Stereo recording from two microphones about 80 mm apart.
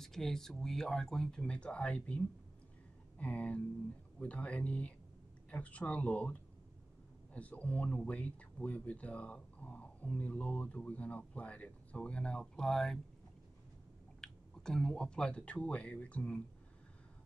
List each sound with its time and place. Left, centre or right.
0.0 s speech: centre
7.3 s speech: centre
14.2 s speech: centre